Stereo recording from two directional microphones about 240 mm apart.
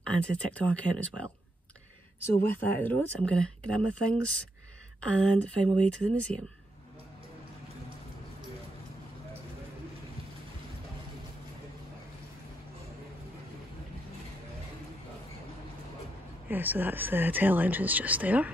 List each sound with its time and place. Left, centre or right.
0.0 s speech: centre
2.5 s speech: centre
6.3 s speech: right
16.4 s speech: centre